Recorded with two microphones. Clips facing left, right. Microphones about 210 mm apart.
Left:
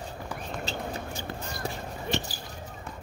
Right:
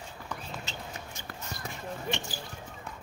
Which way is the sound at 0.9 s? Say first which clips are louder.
Left 7 dB; 30° left (ahead or behind).